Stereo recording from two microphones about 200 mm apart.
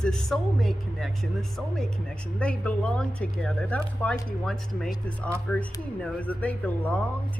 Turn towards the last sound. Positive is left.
turn(degrees=5)  # may be behind; listen again after turning